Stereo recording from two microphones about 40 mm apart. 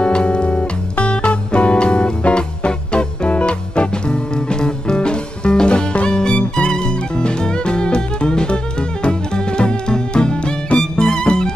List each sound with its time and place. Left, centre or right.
0.0 s music: left